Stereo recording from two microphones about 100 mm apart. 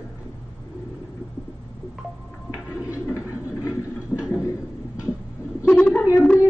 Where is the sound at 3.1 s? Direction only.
30° left (ahead or behind).